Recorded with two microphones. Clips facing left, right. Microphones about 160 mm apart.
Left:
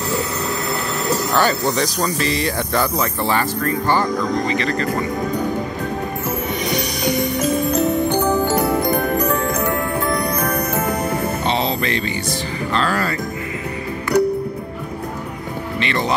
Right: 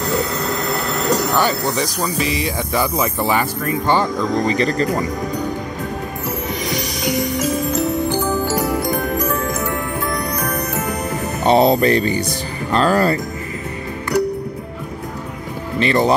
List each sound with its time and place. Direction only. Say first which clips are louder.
1.1 s speech: even; 15° right (ahead or behind)
4.5 s music: right 3 dB; 40° right (ahead or behind)
6.6 s music: left 2 dB; centre (ahead or behind)
8.2 s music: left 2 dB; 20° left (ahead or behind)
8.9 s music: left 2 dB; centre (ahead or behind)
11.4 s music: right 13 dB; 45° right (ahead or behind)
15.8 s music: right 6 dB; 35° right (ahead or behind)